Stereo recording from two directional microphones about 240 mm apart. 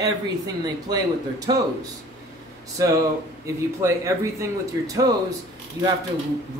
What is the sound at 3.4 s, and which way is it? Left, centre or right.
Speech, centre.